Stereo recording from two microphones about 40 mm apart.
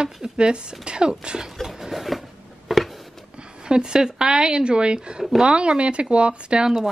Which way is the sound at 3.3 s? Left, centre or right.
Right.